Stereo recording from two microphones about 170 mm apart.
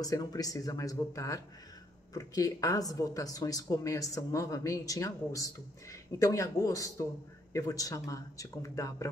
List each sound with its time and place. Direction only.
0.0 s speech: 20° left (ahead or behind)